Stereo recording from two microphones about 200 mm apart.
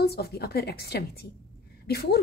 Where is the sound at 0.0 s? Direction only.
55° left (ahead or behind).